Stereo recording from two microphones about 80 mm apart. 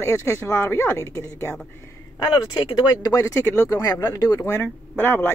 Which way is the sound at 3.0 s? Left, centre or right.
Left.